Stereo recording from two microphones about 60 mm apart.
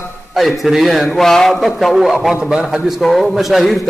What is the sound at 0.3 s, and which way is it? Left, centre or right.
A man's voice, centre.